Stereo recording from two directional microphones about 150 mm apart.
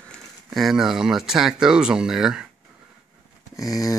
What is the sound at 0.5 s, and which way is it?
Speech, centre (ahead or behind).